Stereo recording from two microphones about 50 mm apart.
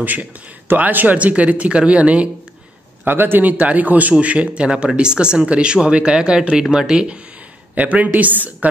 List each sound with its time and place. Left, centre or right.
0.0 s speech: right
3.1 s a man's voice: right; by 7.1 s centre
7.7 s a man's voice: right